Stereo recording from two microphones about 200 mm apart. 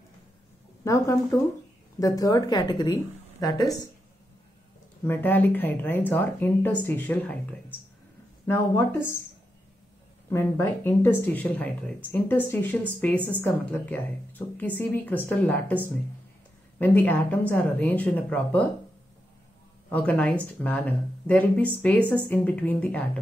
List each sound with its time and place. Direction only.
0.8 s a woman's voice: 15° left (ahead or behind)
5.0 s speech: 10° left (ahead or behind)
8.5 s speech: 10° left (ahead or behind)
10.3 s speech: 10° left (ahead or behind)
19.9 s speech: 10° left (ahead or behind)